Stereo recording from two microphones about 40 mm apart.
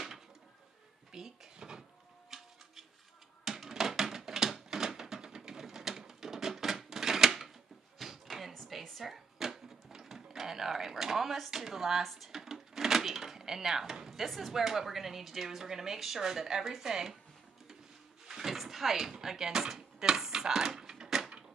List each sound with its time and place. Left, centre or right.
1.1 s dishes: centre
2.3 s music: centre
3.4 s a sound: centre
8.8 s drawer open or close: centre
11.6 s speech: centre
18.3 s a sound: centre